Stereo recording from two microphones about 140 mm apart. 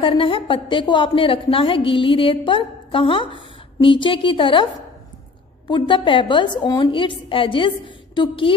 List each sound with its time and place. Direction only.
0.0 s a woman's voice: 40° left (ahead or behind)
5.7 s a woman's voice: 35° left (ahead or behind)